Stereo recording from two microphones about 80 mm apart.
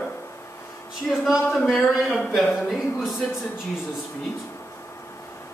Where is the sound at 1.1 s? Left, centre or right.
Centre.